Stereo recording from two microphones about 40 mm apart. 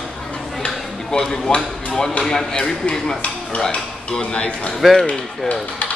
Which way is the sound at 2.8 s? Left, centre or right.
Centre.